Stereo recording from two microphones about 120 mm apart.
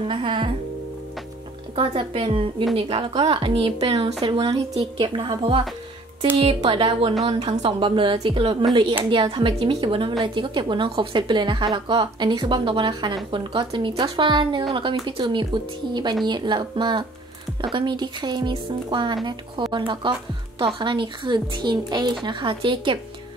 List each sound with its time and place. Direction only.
0.1 s a woman's voice: 40° right (ahead or behind)
1.8 s a woman's voice: 45° right (ahead or behind)
6.6 s a woman's voice: 45° right (ahead or behind)